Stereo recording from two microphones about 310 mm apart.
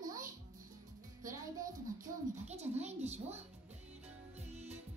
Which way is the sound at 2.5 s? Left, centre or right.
Right.